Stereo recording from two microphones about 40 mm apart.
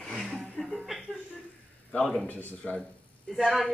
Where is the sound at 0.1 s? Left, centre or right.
Centre.